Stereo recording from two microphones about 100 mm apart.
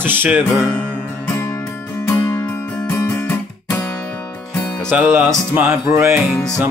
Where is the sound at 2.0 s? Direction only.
25° left (ahead or behind).